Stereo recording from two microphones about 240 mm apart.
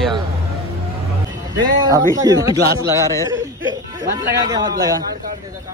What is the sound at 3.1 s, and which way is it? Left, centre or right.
Chuckle, centre.